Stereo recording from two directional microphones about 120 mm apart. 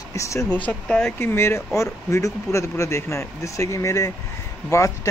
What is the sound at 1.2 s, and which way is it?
Speech, 20° left (ahead or behind).